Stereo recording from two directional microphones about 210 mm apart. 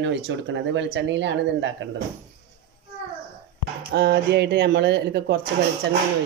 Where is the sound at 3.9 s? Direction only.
50° right (ahead or behind).